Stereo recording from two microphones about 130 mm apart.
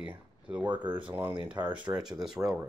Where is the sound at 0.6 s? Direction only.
35° right (ahead or behind).